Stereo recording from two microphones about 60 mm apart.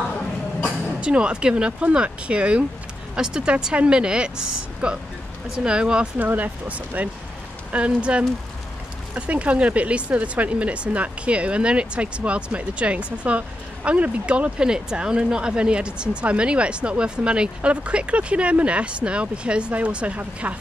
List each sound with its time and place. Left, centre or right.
0.7 s speech: centre
6.1 s speech: right